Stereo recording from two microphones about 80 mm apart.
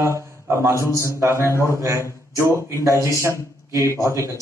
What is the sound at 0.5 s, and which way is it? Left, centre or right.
Speech, right.